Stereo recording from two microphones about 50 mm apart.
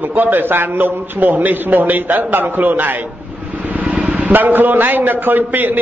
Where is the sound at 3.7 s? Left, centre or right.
Right.